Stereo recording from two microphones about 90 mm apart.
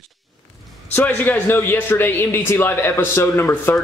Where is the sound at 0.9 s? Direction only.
20° left (ahead or behind).